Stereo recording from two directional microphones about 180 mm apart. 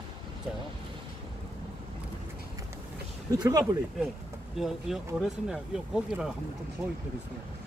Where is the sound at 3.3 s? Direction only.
20° right (ahead or behind).